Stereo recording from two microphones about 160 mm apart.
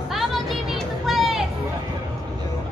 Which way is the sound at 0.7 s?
Centre (ahead or behind).